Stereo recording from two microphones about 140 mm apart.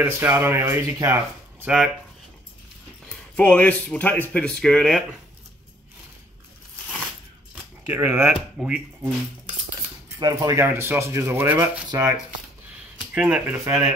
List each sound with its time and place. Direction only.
0.0 s speech: 15° right (ahead or behind)
3.1 s speech: 10° left (ahead or behind)
7.8 s speech: 15° right (ahead or behind)
8.5 s speech: 5° right (ahead or behind)
10.1 s speech: 25° right (ahead or behind)
13.0 s speech: 10° right (ahead or behind)